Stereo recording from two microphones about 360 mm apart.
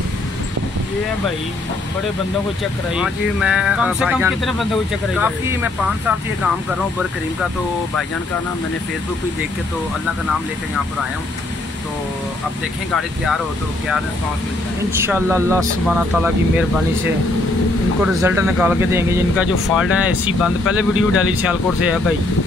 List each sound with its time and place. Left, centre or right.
2.9 s speech: centre
12.9 s speech: centre
15.0 s speech: centre
18.0 s speech: centre